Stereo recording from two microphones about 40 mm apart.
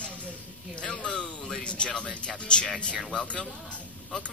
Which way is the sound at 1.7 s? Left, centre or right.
Left.